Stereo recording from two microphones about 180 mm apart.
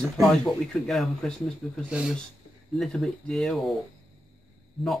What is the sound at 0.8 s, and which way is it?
Speech, centre (ahead or behind).